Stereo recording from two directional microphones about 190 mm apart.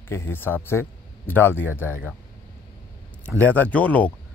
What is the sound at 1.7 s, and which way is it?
Speech, 10° right (ahead or behind).